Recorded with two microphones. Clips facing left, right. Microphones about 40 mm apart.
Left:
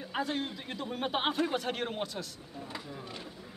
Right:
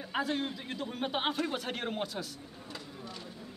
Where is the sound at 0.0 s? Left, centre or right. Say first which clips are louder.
Right 1 dB; centre.